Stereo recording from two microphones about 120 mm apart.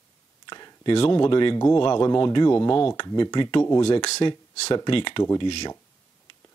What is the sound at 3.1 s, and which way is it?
Speech, 35° left (ahead or behind).